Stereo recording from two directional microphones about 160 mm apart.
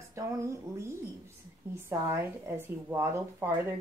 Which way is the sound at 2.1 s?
15° right (ahead or behind).